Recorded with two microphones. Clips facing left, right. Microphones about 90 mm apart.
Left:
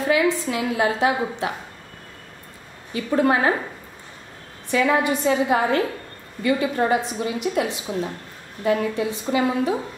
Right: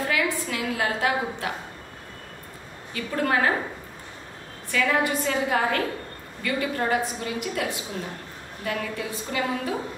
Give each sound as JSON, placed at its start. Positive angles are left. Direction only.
{"t": 0.1, "sound": "a woman's voice", "side_deg": 20}
{"t": 2.9, "sound": "a woman's voice", "side_deg": 20}
{"t": 4.6, "sound": "a woman's voice", "side_deg": 25}